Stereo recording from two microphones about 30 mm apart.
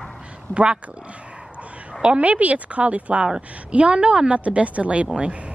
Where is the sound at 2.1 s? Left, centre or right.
Right.